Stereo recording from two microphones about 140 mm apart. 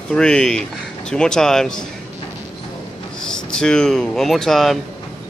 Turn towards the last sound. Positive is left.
turn(degrees=0)  # may be behind; listen again after turning